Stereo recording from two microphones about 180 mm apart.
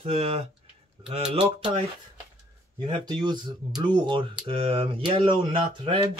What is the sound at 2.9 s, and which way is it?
Speech, 25° right (ahead or behind).